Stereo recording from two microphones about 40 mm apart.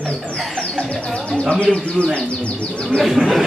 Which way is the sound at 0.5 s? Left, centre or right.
Left.